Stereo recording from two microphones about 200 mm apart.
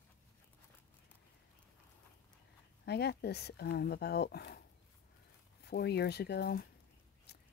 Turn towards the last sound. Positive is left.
turn(degrees=50)  # may be behind; listen again after turning